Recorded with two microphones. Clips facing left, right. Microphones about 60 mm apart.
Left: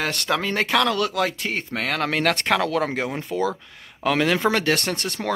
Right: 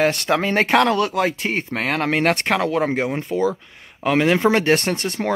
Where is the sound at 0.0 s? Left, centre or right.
Right.